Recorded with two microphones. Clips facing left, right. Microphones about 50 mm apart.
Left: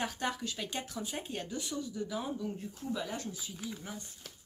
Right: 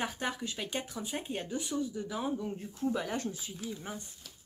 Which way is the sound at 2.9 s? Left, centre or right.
Right.